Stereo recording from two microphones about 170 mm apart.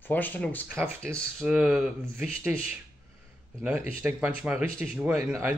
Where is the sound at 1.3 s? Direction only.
5° right (ahead or behind).